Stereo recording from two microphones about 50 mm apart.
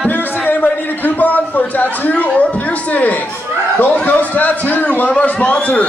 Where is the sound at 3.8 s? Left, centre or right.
Left.